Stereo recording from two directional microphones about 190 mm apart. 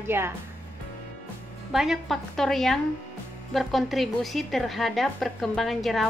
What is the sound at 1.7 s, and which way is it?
A woman's voice, centre (ahead or behind).